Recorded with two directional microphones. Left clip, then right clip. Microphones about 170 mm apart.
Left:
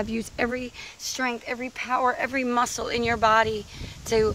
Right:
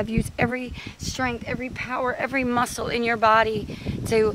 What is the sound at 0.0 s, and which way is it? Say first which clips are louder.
Speech: right 2 dB; 25° right (ahead or behind).